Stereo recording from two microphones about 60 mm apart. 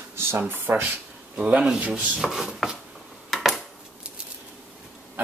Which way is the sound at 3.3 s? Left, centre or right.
Centre.